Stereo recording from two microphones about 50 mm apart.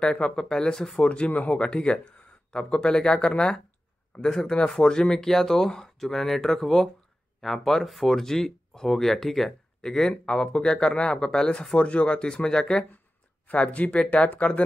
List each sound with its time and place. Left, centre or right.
0.0 s speech: centre
1.0 s speech: left
1.6 s speech: centre
13.5 s speech: left